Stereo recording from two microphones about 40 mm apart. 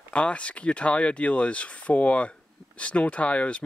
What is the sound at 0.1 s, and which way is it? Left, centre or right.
Speech, left.